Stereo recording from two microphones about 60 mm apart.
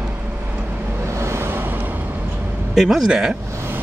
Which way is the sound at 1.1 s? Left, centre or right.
Right.